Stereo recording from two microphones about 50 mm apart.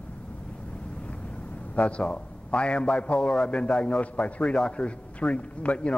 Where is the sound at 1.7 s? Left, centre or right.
Left.